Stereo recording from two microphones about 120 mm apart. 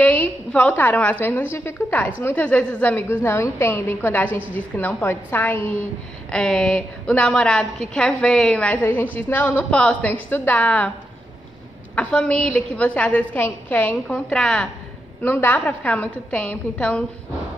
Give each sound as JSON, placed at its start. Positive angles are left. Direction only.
{"t": 0.0, "sound": "a woman's voice", "side_deg": 10}
{"t": 6.3, "sound": "a woman's voice", "side_deg": 5}
{"t": 11.9, "sound": "a woman's voice", "side_deg": 10}